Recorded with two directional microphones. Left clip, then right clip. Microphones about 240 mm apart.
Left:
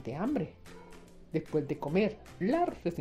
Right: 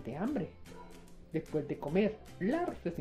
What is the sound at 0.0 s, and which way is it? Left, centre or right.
Speech, left.